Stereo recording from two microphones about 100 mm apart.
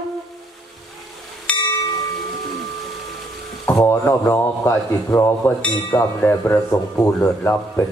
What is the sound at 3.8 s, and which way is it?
A man's voice, 25° left (ahead or behind).